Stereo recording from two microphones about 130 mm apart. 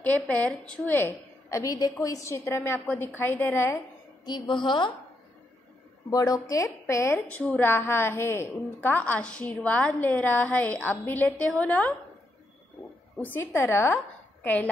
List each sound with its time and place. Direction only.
0.0 s a woman's voice: 10° left (ahead or behind)
4.2 s a woman's voice: 35° left (ahead or behind)
6.0 s a woman's voice: 25° left (ahead or behind)
13.2 s a woman's voice: 15° left (ahead or behind)